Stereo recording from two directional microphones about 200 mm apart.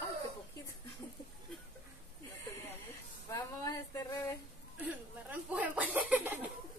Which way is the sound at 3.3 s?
15° left (ahead or behind).